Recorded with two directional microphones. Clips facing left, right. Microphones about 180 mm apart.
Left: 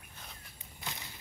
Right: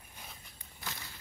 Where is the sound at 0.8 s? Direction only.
20° left (ahead or behind).